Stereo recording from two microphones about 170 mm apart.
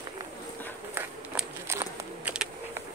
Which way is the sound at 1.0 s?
15° right (ahead or behind).